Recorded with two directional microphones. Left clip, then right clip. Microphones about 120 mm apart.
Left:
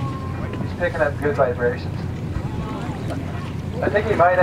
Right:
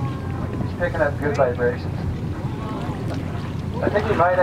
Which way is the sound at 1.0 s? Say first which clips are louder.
Even; 45° left (ahead or behind).